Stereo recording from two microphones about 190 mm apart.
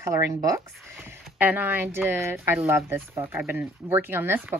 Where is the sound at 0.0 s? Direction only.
15° right (ahead or behind).